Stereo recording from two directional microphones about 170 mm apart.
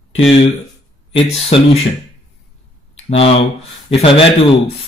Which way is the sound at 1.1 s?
35° left (ahead or behind).